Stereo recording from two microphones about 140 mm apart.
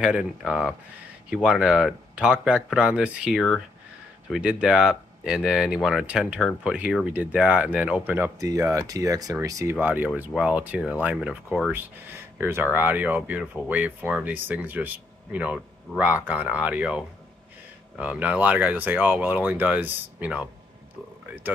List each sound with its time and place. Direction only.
0.0 s speech: 5° right (ahead or behind)
8.4 s speech: 25° right (ahead or behind)